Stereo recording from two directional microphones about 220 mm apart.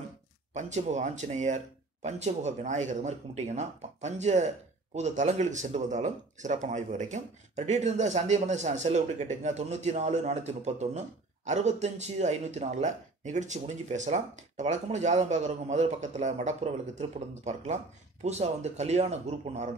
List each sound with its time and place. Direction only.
0.6 s speech: 30° right (ahead or behind)